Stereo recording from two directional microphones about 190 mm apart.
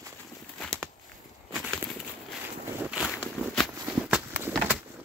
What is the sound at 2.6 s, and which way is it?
Walk, 5° right (ahead or behind).